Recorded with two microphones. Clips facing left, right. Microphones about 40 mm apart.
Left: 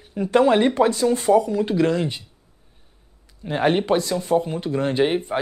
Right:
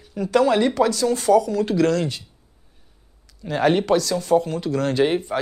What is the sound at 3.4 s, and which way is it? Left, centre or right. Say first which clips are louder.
Speech: right 1 dB; left.